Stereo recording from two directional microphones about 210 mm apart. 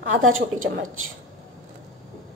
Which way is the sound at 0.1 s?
70° right (ahead or behind).